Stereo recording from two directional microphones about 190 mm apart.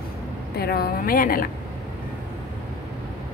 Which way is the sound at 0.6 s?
55° left (ahead or behind).